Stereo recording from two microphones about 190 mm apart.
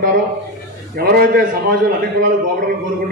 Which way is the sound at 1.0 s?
50° right (ahead or behind).